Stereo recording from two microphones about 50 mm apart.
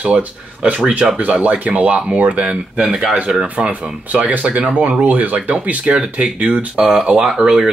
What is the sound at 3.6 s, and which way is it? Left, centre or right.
Speech, right.